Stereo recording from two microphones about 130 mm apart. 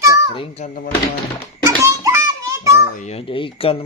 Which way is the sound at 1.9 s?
25° right (ahead or behind).